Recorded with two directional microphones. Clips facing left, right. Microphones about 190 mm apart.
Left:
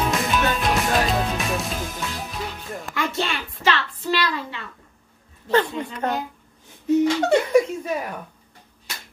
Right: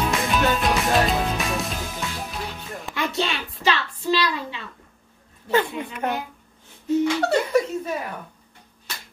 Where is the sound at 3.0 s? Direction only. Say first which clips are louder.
Even; 20° right (ahead or behind).